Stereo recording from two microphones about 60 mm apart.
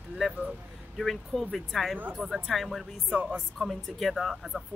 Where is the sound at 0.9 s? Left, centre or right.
Centre.